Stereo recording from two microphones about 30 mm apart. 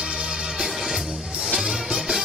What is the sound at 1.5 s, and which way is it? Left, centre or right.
Music, centre.